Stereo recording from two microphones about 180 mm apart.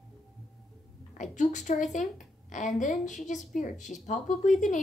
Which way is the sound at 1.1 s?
45° left (ahead or behind).